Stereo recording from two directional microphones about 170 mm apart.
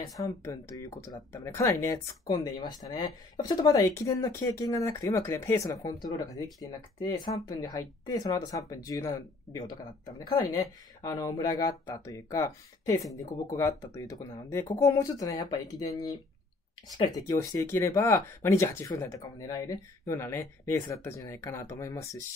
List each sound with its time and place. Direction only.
0.0 s speech: 20° left (ahead or behind)